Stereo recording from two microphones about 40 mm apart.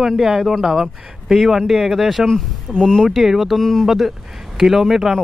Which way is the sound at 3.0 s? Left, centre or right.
Centre.